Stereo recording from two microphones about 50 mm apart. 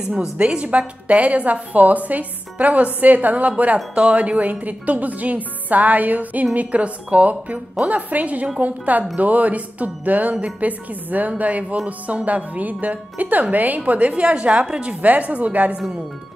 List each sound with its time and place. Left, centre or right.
0.1 s a woman's voice: centre; by 10.3 s right
10.3 s a woman's voice: right
10.7 s a woman's voice: right